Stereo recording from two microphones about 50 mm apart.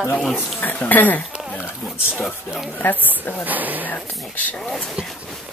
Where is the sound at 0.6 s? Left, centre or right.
Left.